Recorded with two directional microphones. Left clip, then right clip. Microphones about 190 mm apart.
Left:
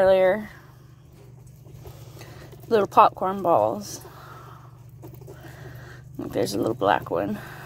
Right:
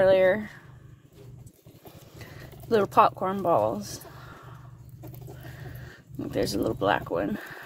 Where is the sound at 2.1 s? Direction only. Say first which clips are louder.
Right 1 dB; 5° right (ahead or behind).